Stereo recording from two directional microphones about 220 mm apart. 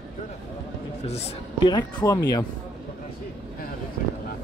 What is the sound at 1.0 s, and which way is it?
Speech, 30° left (ahead or behind).